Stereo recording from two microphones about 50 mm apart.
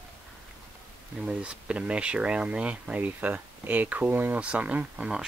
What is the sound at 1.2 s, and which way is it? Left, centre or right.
Speech, right.